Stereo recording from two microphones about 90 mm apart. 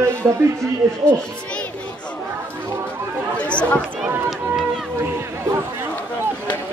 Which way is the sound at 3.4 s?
15° left (ahead or behind).